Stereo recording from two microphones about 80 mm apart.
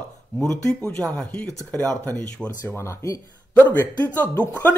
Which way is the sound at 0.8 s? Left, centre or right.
Centre.